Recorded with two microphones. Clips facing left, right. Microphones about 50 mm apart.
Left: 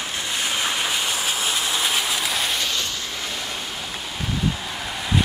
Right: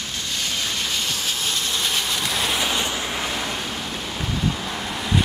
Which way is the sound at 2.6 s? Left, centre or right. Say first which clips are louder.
Right 3 dB; centre.